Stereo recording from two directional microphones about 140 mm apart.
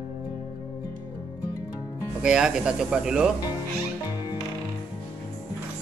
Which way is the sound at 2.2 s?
5° right (ahead or behind).